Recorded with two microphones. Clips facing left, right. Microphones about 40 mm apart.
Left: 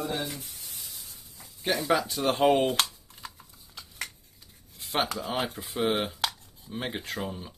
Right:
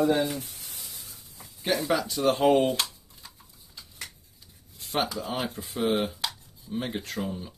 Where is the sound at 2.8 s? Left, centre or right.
Left.